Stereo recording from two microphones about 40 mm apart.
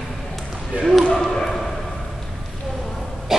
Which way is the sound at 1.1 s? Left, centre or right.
Centre.